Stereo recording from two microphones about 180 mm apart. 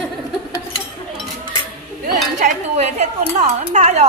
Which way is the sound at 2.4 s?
40° right (ahead or behind).